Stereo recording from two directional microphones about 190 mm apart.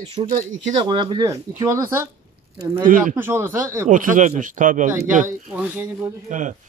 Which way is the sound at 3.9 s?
45° right (ahead or behind).